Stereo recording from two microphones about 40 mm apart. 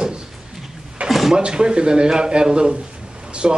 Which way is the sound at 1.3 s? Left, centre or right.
Right.